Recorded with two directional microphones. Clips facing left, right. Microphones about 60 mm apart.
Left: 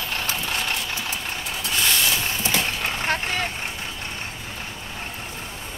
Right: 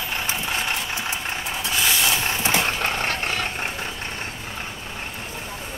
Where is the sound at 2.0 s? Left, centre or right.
Right.